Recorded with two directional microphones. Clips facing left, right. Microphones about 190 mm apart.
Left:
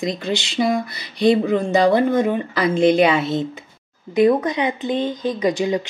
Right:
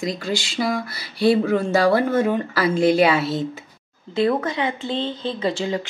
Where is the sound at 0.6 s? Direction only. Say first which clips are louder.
Left 4 dB; centre (ahead or behind).